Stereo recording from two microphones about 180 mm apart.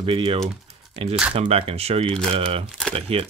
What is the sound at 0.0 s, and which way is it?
Speech, 30° right (ahead or behind).